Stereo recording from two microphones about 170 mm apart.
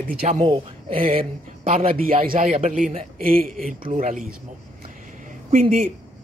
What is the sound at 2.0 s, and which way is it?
Speech, 55° right (ahead or behind).